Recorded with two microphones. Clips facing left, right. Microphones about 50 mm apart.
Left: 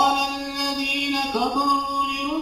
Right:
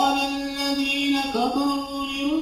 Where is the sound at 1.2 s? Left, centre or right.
Left.